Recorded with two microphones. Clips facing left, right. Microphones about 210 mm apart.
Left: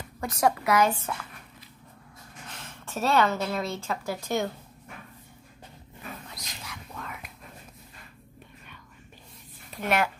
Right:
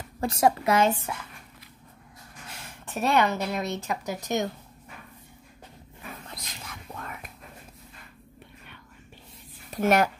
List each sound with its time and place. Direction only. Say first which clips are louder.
0.2 s a woman's voice: right 2 dB; 30° right (ahead or behind)
2.8 s a woman's voice: even; 15° right (ahead or behind)
6.3 s a sound: right 1 dB; 45° right (ahead or behind)
9.7 s a woman's voice: right 5 dB; 45° right (ahead or behind)